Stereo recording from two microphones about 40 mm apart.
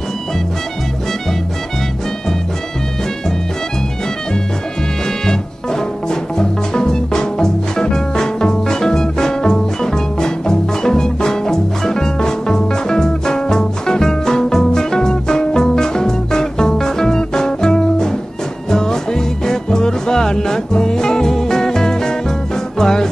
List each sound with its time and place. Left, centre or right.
5.0 s music: centre